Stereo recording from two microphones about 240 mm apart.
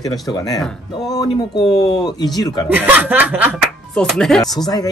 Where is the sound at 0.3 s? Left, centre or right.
Centre.